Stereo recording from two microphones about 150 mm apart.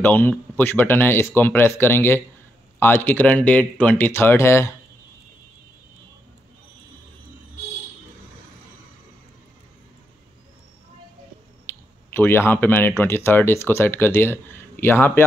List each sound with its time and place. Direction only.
0.0 s speech: 10° left (ahead or behind)
11.6 s speech: 15° left (ahead or behind)